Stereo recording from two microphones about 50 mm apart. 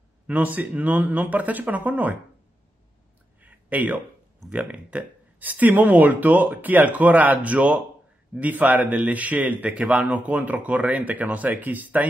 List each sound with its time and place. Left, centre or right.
0.3 s a man's voice: right
3.3 s a sound: right
4.5 s a man's voice: right